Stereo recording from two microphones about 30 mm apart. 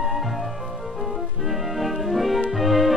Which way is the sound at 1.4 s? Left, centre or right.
Centre.